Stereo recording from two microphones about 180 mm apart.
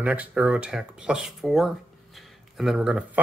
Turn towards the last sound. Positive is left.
turn(degrees=-5)  # may be behind; listen again after turning